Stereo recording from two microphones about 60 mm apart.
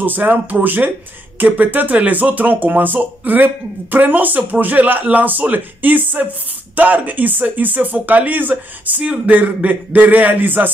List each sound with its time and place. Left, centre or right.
0.0 s speech: right